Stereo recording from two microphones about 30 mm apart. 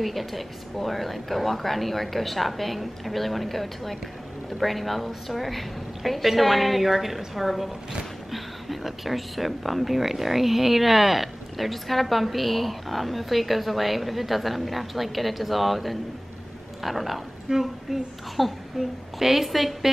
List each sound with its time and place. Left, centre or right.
0.0 s speech: centre
17.5 s a woman's voice: right
18.3 s a woman's voice: centre